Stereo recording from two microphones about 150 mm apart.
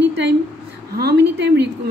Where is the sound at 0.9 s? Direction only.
90° right.